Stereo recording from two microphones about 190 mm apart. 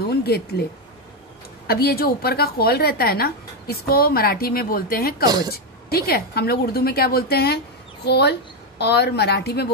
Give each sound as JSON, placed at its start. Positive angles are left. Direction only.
{"t": 0.1, "sound": "speech", "side_deg": 55}
{"t": 1.7, "sound": "a woman's voice", "side_deg": 55}
{"t": 5.2, "sound": "speech", "side_deg": -20}
{"t": 5.5, "sound": "a woman's voice", "side_deg": 55}